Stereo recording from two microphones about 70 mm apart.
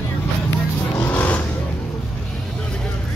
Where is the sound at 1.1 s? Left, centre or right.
Centre.